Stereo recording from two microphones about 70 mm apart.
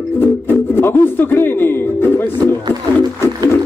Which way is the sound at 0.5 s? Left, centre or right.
Left.